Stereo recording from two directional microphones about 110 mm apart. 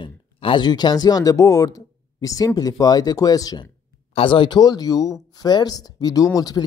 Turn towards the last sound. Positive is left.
turn(degrees=35)  # may be behind; listen again after turning